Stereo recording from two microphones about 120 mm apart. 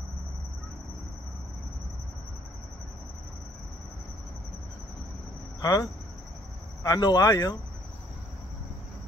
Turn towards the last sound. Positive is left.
turn(degrees=30)  # may be behind; listen again after turning